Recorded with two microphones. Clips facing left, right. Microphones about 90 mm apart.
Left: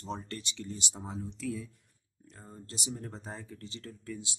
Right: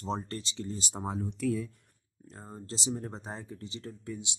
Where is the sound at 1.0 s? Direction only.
55° right (ahead or behind).